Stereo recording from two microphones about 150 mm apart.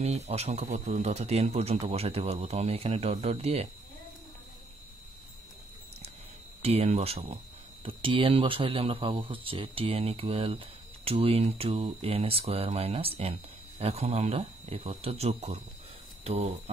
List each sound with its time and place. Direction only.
0.0 s speech: 45° right (ahead or behind)
6.6 s speech: 40° right (ahead or behind)